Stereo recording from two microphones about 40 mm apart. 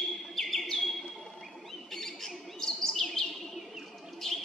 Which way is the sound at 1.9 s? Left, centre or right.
Centre.